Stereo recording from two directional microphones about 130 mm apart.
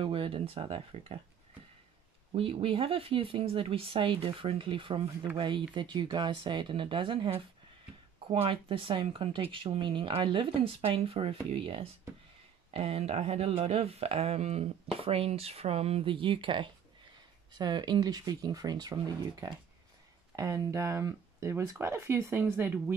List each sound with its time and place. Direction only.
0.0 s speech: 40° right (ahead or behind)
2.3 s speech: 45° right (ahead or behind); by 22.9 s 15° right (ahead or behind)